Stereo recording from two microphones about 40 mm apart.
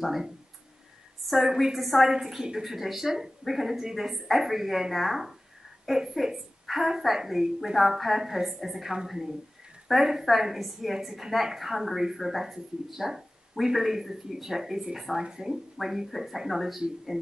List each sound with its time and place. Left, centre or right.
0.0 s a woman's voice: centre
1.5 s a woman's voice: centre
1.8 s a woman's voice: centre
2.0 s a woman's voice: centre
17.1 s speech: centre